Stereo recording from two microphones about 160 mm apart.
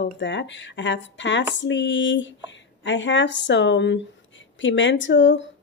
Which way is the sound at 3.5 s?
90° left.